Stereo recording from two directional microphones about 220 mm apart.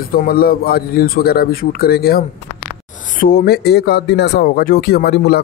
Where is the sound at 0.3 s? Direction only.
45° left (ahead or behind).